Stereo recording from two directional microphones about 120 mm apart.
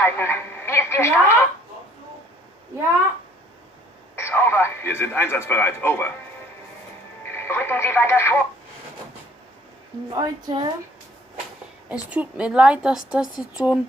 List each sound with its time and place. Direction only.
0.0 s speech: 20° left (ahead or behind)
4.1 s speech: 20° left (ahead or behind)
7.3 s speech: 20° left (ahead or behind)
10.1 s a woman's voice: 40° right (ahead or behind)
11.9 s a woman's voice: 10° right (ahead or behind)